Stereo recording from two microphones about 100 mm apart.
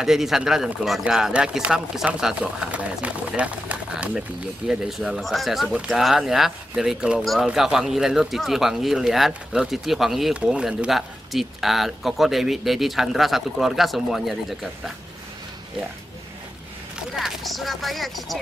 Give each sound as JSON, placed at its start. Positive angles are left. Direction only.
{"t": 0.0, "sound": "speech", "side_deg": -5}
{"t": 17.1, "sound": "speech", "side_deg": 0}